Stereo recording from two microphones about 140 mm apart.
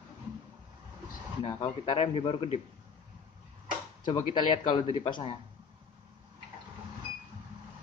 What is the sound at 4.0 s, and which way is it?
Speech, 35° left (ahead or behind).